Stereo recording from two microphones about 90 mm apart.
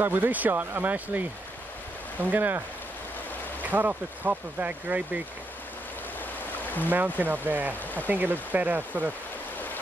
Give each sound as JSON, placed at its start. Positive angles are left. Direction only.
{"t": 0.0, "sound": "speech", "side_deg": -20}
{"t": 3.6, "sound": "speech", "side_deg": -20}
{"t": 6.9, "sound": "speech", "side_deg": -20}